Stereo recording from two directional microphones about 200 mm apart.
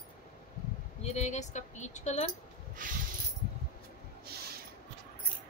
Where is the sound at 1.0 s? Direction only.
35° left (ahead or behind).